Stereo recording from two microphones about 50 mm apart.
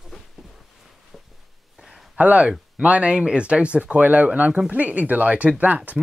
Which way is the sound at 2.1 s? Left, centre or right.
Right.